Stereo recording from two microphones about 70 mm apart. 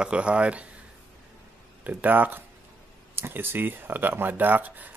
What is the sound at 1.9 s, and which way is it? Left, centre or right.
Speech, right.